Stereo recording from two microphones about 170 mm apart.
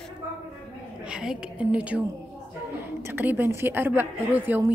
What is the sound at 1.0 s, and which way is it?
A woman's voice, 5° right (ahead or behind).